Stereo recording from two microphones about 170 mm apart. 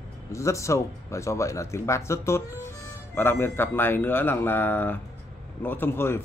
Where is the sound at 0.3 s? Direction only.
15° left (ahead or behind).